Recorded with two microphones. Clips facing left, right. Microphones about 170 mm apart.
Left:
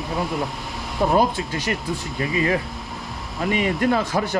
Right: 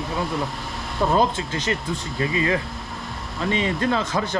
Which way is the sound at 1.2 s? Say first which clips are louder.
Left 1 dB; 25° right (ahead or behind).